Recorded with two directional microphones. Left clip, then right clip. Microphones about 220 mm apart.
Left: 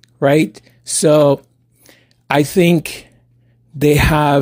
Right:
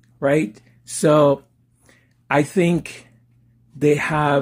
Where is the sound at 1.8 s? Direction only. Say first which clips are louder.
Left 4 dB; 40° left (ahead or behind).